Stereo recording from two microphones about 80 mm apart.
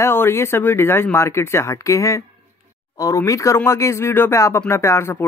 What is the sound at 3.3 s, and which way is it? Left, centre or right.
Speech, left.